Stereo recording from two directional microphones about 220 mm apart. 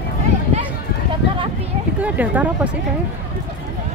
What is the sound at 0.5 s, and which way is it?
Run, 30° right (ahead or behind).